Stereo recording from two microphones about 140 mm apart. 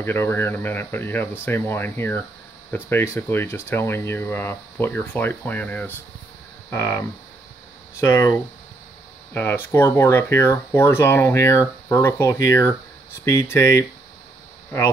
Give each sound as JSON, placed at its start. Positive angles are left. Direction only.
{"t": 0.0, "sound": "speech", "side_deg": 15}